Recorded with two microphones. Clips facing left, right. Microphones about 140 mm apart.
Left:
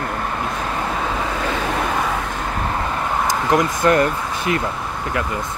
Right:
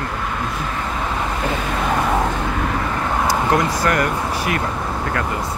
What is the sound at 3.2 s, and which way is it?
Speech, 20° left (ahead or behind).